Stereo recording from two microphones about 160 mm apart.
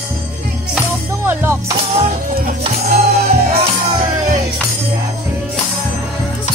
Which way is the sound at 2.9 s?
70° right (ahead or behind).